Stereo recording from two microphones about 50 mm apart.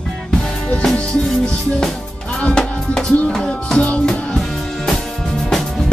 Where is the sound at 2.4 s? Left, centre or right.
Centre.